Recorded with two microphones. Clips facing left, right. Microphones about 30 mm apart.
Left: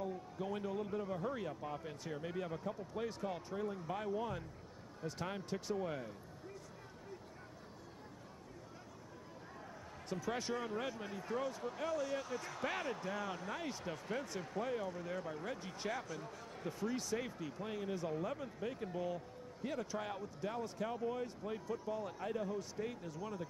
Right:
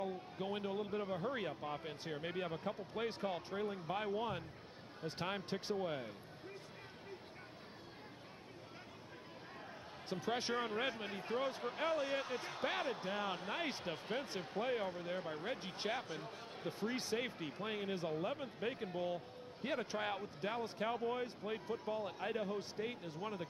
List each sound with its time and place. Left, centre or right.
0.0 s speech: right
10.0 s speech: right